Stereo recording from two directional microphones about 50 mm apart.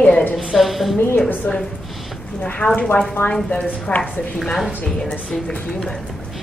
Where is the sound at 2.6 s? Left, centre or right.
Left.